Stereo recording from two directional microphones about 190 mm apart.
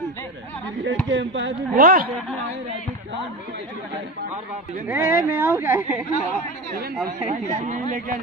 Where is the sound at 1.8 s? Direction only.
50° right (ahead or behind).